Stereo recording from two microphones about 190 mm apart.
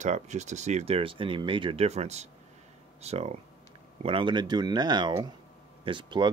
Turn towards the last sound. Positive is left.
turn(degrees=-25)  # may be behind; listen again after turning